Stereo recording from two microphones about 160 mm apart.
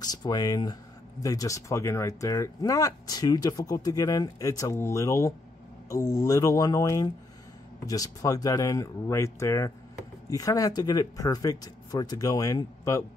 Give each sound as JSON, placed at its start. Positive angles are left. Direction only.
{"t": 0.0, "sound": "speech", "side_deg": 25}